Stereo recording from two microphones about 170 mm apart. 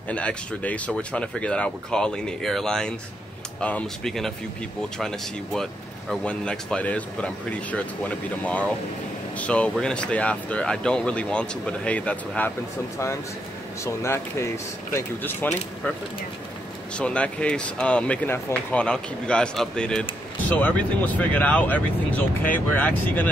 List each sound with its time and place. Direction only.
0.1 s speech: 5° left (ahead or behind)
13.8 s speech: 15° left (ahead or behind)
16.9 s speech: 5° left (ahead or behind)